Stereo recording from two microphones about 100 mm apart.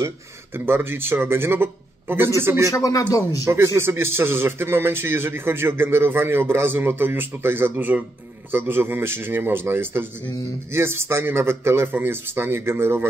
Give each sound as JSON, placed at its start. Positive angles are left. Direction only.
{"t": 0.7, "sound": "a man's voice", "side_deg": -20}
{"t": 2.7, "sound": "speech", "side_deg": 35}
{"t": 3.4, "sound": "a man's voice", "side_deg": -25}